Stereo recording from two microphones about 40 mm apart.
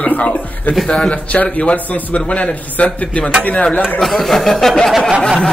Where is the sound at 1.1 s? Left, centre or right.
Left.